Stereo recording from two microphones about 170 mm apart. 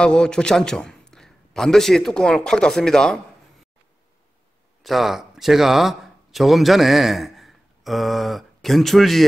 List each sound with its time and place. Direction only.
0.0 s a man's voice: 5° left (ahead or behind)
4.8 s speech: centre (ahead or behind)